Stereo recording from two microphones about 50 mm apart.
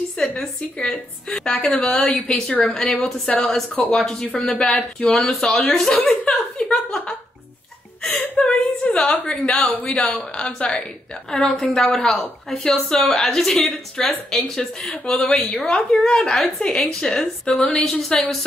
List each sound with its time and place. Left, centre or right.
0.2 s a woman's voice: left; by 4.4 s centre
4.5 s a woman's voice: left
5.1 s a woman's voice: centre
6.3 s a sound: centre
8.0 s a woman's voice: centre
8.5 s a woman's voice: centre